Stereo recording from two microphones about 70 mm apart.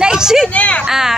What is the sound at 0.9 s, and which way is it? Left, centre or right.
Speech, centre.